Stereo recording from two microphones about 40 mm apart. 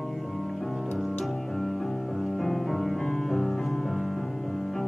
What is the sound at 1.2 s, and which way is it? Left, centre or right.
Music, centre.